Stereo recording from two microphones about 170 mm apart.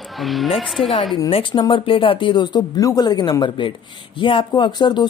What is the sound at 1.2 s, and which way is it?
Speech, 30° left (ahead or behind).